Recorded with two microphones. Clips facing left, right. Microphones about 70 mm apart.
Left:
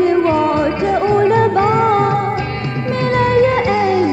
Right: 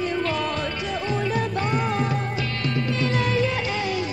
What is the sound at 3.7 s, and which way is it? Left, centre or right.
Music, left.